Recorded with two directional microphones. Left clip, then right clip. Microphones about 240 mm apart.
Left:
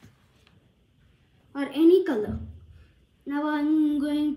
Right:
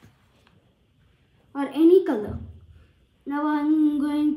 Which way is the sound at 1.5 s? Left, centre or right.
Centre.